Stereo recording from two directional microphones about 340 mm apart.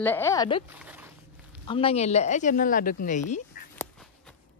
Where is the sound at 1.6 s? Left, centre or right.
Centre.